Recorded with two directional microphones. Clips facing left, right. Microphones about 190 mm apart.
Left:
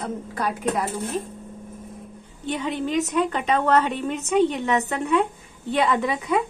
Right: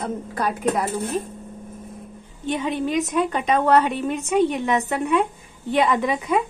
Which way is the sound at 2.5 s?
15° right (ahead or behind).